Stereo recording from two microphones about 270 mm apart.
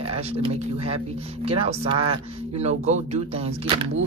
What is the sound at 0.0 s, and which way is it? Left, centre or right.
Speech, right.